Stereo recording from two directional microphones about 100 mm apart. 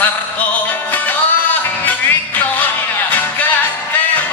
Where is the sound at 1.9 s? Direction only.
15° left (ahead or behind).